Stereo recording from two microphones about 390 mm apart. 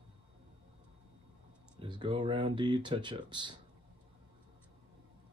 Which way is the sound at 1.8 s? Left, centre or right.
Centre.